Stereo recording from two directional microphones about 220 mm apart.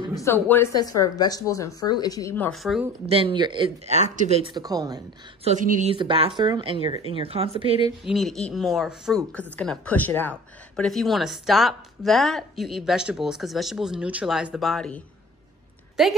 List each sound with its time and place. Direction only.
0.1 s speech: 10° left (ahead or behind)
3.1 s speech: 25° right (ahead or behind)
5.5 s speech: 35° right (ahead or behind)
8.0 s a woman's voice: centre (ahead or behind)